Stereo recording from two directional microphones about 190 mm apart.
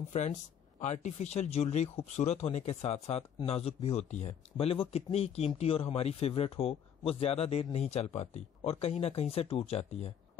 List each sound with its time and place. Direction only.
0.1 s speech: 40° left (ahead or behind)